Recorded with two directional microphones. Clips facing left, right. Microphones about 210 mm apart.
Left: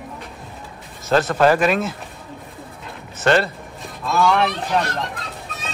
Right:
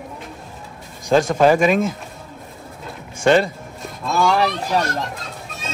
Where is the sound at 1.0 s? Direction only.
10° right (ahead or behind).